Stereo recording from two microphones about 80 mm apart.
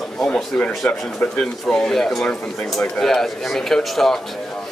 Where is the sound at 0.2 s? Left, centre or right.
Centre.